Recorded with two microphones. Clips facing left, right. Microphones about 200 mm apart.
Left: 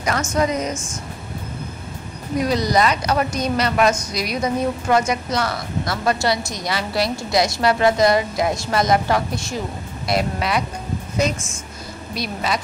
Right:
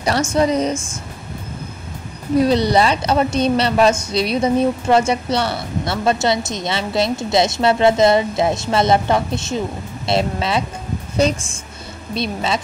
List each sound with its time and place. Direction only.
0.0 s a woman's voice: 30° right (ahead or behind)
2.3 s a woman's voice: 30° right (ahead or behind)
12.1 s a woman's voice: 25° right (ahead or behind)